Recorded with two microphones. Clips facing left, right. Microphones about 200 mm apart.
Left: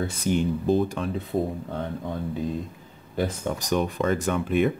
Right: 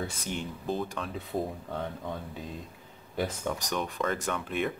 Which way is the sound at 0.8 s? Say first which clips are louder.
Left 8 dB; 10° left (ahead or behind).